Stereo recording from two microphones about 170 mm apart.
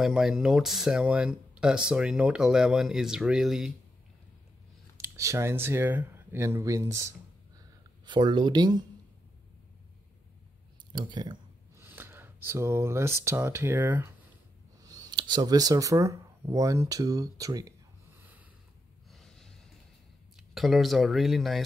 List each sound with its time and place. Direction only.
0.0 s speech: 5° right (ahead or behind)
4.9 s speech: 15° right (ahead or behind)
10.9 s a sound: 25° right (ahead or behind)
11.8 s speech: 15° right (ahead or behind)
19.0 s snort: centre (ahead or behind)
20.3 s speech: centre (ahead or behind)